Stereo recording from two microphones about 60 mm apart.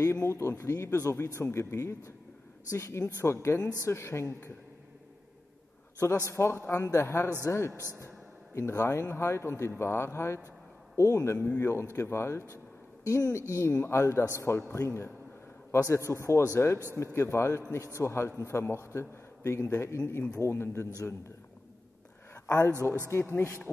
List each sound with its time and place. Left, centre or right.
0.0 s speech: left
5.9 s speech: left
7.7 s speech: right
8.5 s a woman's voice: left
13.0 s a woman's voice: left
22.3 s speech: left